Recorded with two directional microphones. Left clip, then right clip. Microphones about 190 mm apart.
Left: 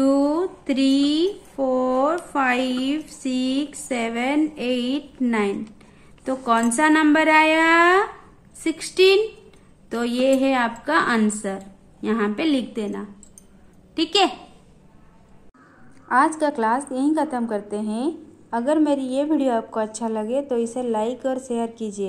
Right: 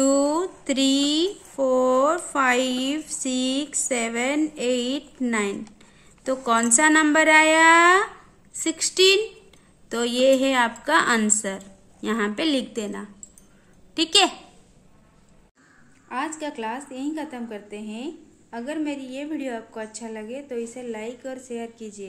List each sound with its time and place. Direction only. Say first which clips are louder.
0.0 s speech: left 1 dB; 25° right (ahead or behind)
16.3 s a woman's voice: left 9 dB; centre (ahead or behind)
16.7 s a woman's voice: left 9 dB; 20° left (ahead or behind)
17.1 s a woman's voice: left 11 dB; centre (ahead or behind)
17.6 s a woman's voice: left 8 dB; 20° left (ahead or behind)
20.3 s a woman's voice: left 9 dB; 5° right (ahead or behind)
20.9 s a woman's voice: left 10 dB; 25° left (ahead or behind)